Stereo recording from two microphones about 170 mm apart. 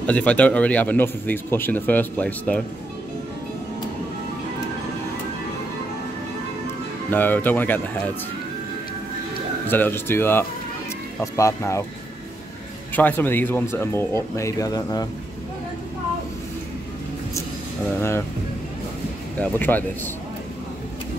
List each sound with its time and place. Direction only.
0.0 s speech: 5° left (ahead or behind)
7.1 s speech: 10° left (ahead or behind)
9.7 s speech: 10° left (ahead or behind)
12.9 s speech: 10° left (ahead or behind)
19.4 s speech: 10° left (ahead or behind)